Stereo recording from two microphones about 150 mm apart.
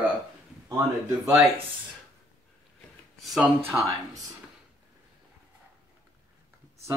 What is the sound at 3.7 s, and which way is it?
Speech, 20° right (ahead or behind).